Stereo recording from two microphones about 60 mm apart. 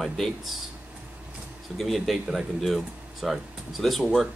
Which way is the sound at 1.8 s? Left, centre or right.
Centre.